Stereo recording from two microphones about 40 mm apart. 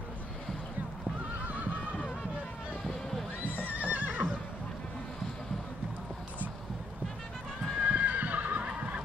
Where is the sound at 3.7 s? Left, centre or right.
Right.